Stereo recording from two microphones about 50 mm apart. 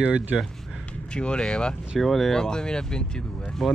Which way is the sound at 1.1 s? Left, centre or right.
Centre.